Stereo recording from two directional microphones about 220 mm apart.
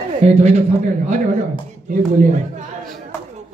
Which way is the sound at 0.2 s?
30° right (ahead or behind).